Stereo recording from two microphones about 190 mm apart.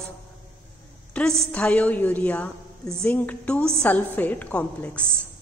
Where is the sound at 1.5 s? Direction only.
5° left (ahead or behind).